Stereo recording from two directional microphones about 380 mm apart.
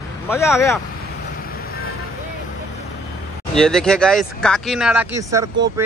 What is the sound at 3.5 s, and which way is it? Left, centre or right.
A man's voice, centre.